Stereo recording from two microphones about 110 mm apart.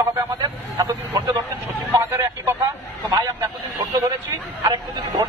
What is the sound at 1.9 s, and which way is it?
Vehicle, 25° right (ahead or behind).